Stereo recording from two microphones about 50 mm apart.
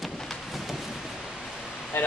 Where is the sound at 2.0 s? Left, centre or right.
Left.